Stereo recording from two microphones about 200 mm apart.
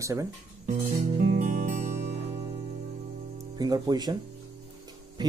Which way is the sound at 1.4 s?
35° right (ahead or behind).